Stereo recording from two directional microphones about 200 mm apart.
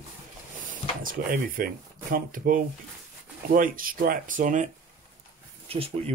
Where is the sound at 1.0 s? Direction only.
45° right (ahead or behind).